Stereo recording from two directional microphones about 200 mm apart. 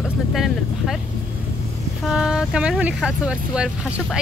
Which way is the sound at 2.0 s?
5° right (ahead or behind).